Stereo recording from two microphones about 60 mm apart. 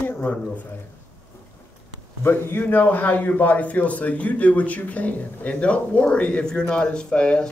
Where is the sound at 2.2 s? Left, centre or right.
Left.